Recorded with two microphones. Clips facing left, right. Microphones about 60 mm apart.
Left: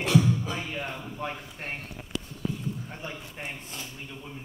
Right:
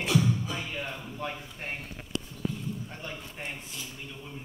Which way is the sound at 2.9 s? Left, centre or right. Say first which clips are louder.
Left 1 dB; centre.